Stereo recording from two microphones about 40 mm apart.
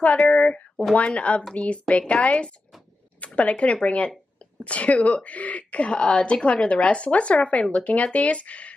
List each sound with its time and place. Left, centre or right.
0.3 s speech: left